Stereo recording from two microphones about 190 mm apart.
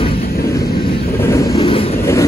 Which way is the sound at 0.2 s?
50° left (ahead or behind).